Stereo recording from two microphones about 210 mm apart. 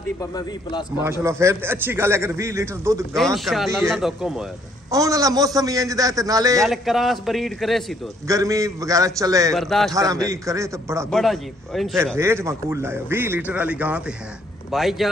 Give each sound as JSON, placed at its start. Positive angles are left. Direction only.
{"t": 0.2, "sound": "speech", "side_deg": 20}
{"t": 0.9, "sound": "a man's voice", "side_deg": -10}
{"t": 3.3, "sound": "a man's voice", "side_deg": 0}
{"t": 4.9, "sound": "a man's voice", "side_deg": -15}
{"t": 6.6, "sound": "a man's voice", "side_deg": 0}
{"t": 8.3, "sound": "a man's voice", "side_deg": -15}
{"t": 9.5, "sound": "a man's voice", "side_deg": 0}
{"t": 9.9, "sound": "a man's voice", "side_deg": -15}
{"t": 11.1, "sound": "a man's voice", "side_deg": 0}
{"t": 12.2, "sound": "a man's voice", "side_deg": -10}